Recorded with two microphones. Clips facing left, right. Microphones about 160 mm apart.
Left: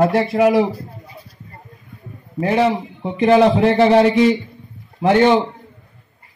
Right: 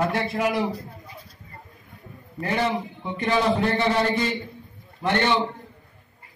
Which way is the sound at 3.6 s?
85° left.